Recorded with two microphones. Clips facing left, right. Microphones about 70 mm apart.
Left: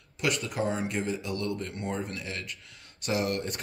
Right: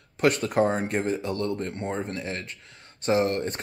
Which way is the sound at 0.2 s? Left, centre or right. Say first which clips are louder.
Right 8 dB; right.